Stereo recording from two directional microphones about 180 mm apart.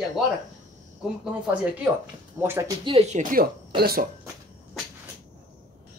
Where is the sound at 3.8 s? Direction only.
55° right (ahead or behind).